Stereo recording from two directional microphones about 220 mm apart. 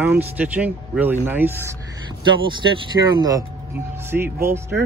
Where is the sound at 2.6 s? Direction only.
60° right (ahead or behind).